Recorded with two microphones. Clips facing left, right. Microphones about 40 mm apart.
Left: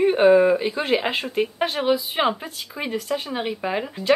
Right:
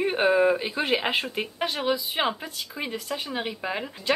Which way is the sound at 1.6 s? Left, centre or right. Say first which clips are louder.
Left 3 dB; centre.